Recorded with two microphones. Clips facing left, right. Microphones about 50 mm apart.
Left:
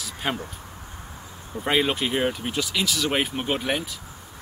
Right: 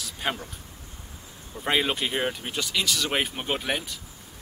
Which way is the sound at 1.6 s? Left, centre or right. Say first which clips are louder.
Left 2 dB; centre.